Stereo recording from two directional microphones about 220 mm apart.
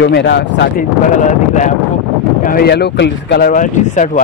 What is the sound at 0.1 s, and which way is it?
Speech, 50° left (ahead or behind).